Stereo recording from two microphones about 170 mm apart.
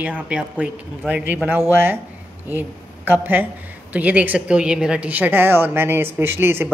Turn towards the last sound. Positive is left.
turn(degrees=-15)  # may be behind; listen again after turning